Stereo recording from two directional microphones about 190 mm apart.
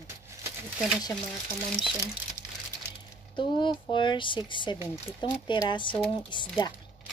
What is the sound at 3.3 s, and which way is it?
Speech, 25° left (ahead or behind).